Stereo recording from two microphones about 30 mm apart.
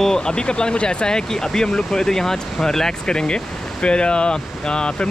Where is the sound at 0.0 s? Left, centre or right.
Left.